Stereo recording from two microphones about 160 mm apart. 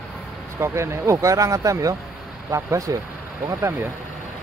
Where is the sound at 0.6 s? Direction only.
15° right (ahead or behind).